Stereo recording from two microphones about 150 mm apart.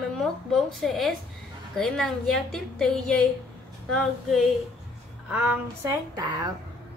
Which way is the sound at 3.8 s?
5° left (ahead or behind).